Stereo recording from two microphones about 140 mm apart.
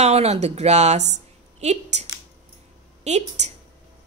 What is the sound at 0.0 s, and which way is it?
A woman's voice, 50° right (ahead or behind).